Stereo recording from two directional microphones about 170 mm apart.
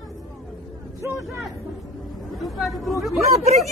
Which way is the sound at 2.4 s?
Centre (ahead or behind).